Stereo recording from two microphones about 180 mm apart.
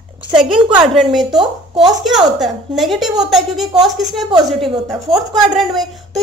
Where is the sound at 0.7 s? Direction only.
Centre (ahead or behind).